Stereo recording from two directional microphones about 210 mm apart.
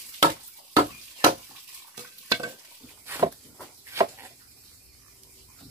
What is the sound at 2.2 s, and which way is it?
Stir, 15° right (ahead or behind).